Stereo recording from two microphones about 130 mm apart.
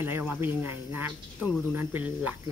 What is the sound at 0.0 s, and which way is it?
Speech, 15° right (ahead or behind).